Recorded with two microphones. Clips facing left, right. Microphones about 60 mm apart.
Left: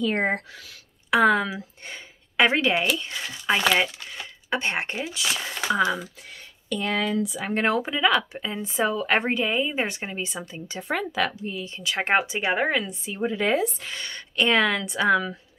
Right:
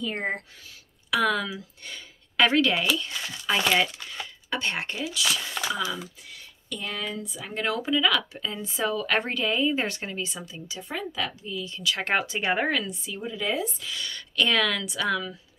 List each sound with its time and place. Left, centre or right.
0.0 s speech: left
1.1 s speech: left
6.7 s speech: left
7.4 s speech: left
10.4 s speech: left
10.8 s speech: left
11.4 s speech: left; by 12.9 s centre
13.2 s speech: left
13.8 s speech: left